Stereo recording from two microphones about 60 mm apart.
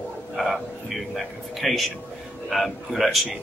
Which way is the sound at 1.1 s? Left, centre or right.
Centre.